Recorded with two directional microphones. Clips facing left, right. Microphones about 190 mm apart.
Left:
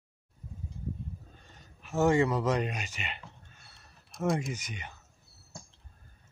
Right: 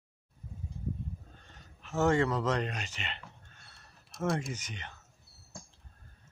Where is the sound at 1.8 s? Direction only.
10° left (ahead or behind).